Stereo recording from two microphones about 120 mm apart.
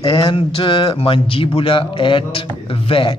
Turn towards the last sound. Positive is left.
turn(degrees=50)  # may be behind; listen again after turning